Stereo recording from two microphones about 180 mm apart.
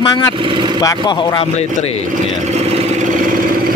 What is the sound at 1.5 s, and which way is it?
Speech, 35° left (ahead or behind).